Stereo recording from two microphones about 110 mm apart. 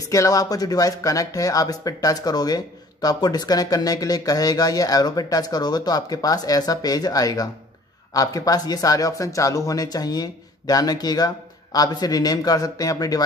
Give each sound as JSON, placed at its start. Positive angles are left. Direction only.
{"t": 0.0, "sound": "speech", "side_deg": 30}